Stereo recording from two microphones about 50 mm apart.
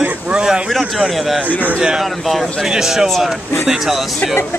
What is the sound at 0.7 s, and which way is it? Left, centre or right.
Speech, centre.